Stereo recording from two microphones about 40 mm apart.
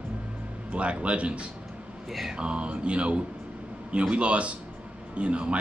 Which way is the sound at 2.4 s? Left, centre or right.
Right.